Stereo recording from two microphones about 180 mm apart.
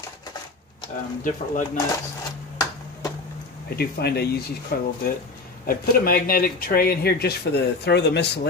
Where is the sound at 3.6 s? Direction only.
60° left (ahead or behind).